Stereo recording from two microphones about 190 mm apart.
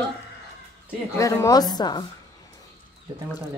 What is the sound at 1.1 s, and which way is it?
Speech, 15° left (ahead or behind).